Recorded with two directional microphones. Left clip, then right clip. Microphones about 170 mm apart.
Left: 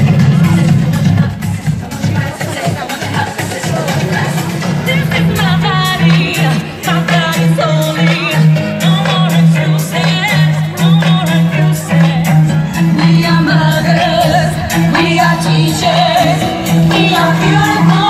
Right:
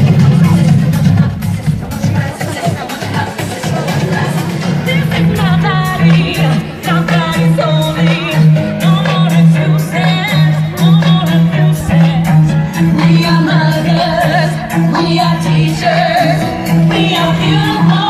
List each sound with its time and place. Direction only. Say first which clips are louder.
0.0 s music: even; 50° right (ahead or behind)
4.8 s music: left 1 dB; 10° right (ahead or behind)
12.7 s music: even; 25° right (ahead or behind)
13.5 s music: left 1 dB; 5° right (ahead or behind)
15.2 s music: left 3 dB; centre (ahead or behind)